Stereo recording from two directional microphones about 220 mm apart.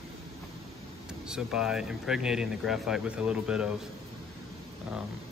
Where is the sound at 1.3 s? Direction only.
5° right (ahead or behind).